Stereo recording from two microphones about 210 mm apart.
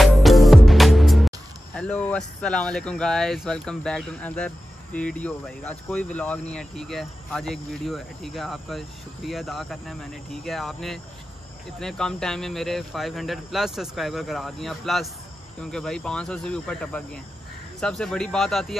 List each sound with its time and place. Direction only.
0.0 s music: centre (ahead or behind)
1.8 s speech: 5° left (ahead or behind)